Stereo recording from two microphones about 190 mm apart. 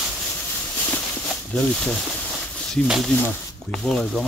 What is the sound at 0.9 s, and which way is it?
Speech, 5° left (ahead or behind).